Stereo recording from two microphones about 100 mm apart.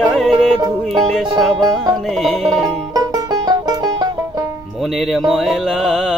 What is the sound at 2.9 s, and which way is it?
Music, 40° right (ahead or behind).